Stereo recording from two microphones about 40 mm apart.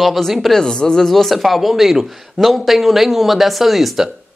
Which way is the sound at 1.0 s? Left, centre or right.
Centre.